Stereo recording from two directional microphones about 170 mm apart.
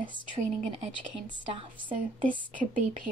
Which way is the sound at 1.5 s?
30° right (ahead or behind).